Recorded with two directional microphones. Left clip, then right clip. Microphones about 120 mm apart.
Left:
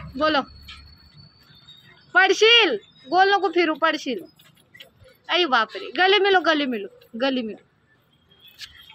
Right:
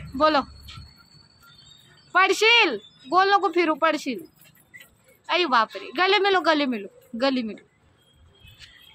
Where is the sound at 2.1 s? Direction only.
15° right (ahead or behind).